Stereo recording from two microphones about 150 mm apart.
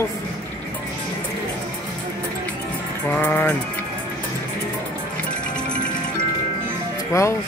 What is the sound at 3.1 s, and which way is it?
Speech, 15° left (ahead or behind).